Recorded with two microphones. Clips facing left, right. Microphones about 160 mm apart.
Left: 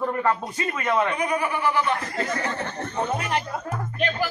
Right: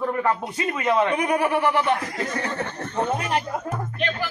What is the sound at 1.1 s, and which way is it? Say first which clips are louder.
Speech: right 4 dB; 65° right (ahead or behind).